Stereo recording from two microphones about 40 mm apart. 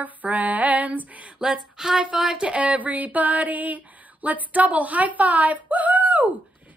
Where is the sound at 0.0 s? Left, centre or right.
Right.